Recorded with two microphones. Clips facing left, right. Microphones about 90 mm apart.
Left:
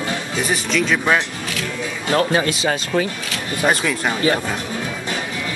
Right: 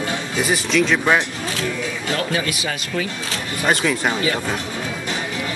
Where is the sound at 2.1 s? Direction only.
35° left (ahead or behind).